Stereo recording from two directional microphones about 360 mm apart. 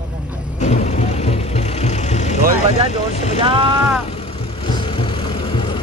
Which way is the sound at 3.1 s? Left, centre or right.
Centre.